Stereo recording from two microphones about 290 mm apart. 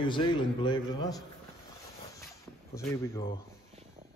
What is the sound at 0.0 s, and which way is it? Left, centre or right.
Speech, centre.